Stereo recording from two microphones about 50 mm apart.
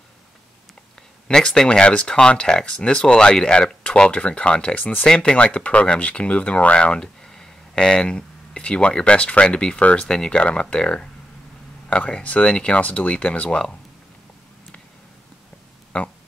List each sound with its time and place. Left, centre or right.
1.2 s speech: centre
5.0 s speech: centre
10.0 s speech: centre
15.9 s speech: left